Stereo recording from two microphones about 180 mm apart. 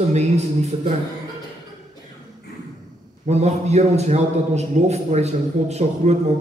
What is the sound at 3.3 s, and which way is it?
A man's voice, 35° right (ahead or behind).